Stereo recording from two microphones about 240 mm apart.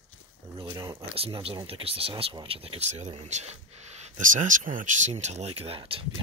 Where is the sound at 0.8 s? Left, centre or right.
Centre.